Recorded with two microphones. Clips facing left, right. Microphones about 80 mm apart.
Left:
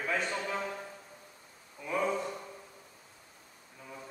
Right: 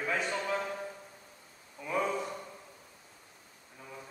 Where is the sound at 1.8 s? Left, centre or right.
Centre.